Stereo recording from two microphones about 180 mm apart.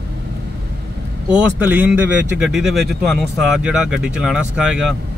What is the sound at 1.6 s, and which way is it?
A man's voice, 10° right (ahead or behind).